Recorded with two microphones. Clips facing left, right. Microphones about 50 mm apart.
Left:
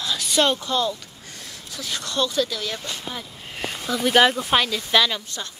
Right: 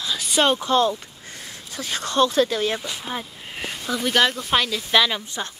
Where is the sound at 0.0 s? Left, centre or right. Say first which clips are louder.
Even; centre.